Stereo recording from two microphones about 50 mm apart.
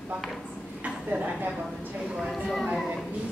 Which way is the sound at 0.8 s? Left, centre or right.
Right.